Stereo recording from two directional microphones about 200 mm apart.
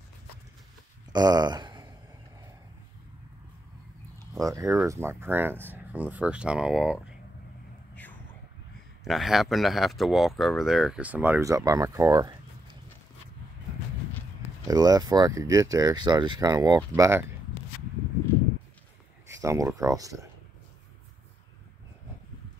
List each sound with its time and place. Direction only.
1.1 s a sound: 20° right (ahead or behind)
4.3 s speech: 15° right (ahead or behind)
7.9 s a sound: 10° left (ahead or behind)
9.0 s speech: centre (ahead or behind); by 12.4 s 20° right (ahead or behind)
14.7 s speech: 20° right (ahead or behind)
19.4 s speech: 15° right (ahead or behind)